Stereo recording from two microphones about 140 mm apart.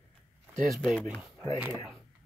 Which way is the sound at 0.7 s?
5° left (ahead or behind).